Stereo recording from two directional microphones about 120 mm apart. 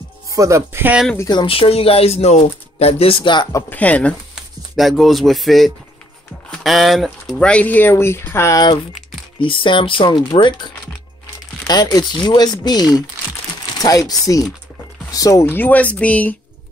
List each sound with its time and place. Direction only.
0.3 s speech: 25° right (ahead or behind)
1.3 s speech: 45° left (ahead or behind)
3.7 s speech: 10° left (ahead or behind)
4.7 s speech: centre (ahead or behind); by 8.6 s 25° left (ahead or behind)
9.4 s speech: 45° left (ahead or behind); by 15.4 s 30° left (ahead or behind)
15.4 s speech: 15° left (ahead or behind)